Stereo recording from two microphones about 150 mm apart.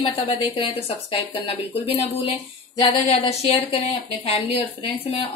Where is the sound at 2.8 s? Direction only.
45° left (ahead or behind).